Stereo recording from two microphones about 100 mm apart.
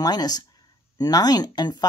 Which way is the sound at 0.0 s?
40° left (ahead or behind).